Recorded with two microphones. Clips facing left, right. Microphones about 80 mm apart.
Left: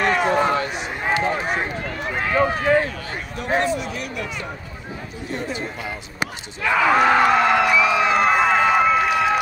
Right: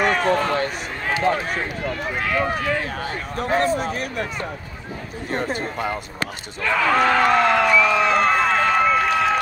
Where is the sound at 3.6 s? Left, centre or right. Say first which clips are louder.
Right 2 dB; right.